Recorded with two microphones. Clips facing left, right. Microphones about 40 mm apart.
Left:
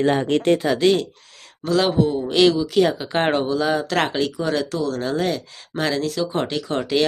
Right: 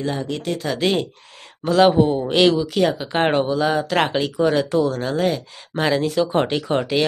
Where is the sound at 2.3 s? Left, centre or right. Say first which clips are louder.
Left 2 dB; centre.